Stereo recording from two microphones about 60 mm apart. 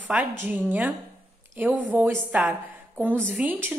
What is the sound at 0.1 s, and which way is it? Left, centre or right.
Speech, centre.